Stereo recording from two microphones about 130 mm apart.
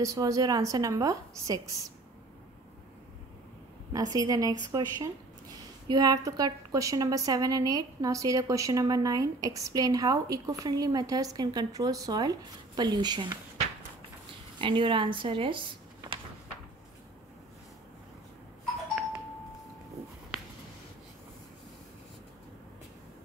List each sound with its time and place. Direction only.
0.0 s a woman's voice: 25° right (ahead or behind)
3.9 s a woman's voice: 25° right (ahead or behind)
14.6 s speech: 40° right (ahead or behind)